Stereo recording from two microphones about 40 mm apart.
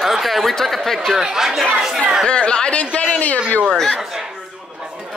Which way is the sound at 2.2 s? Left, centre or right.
Left.